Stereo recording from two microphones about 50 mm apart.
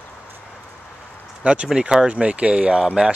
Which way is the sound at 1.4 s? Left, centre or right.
Right.